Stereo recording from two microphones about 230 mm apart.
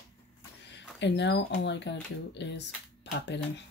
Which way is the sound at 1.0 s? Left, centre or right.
Left.